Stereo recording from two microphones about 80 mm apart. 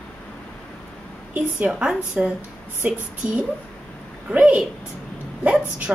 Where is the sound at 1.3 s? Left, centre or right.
Centre.